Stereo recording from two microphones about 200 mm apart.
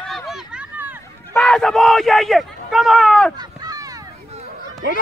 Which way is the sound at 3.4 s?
20° right (ahead or behind).